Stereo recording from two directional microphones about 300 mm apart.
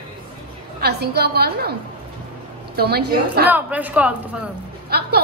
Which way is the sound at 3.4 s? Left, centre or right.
Centre.